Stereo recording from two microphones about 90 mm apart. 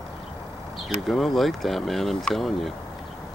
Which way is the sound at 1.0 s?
5° left (ahead or behind).